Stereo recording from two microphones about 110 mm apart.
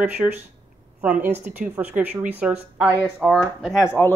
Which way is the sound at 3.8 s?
25° left (ahead or behind).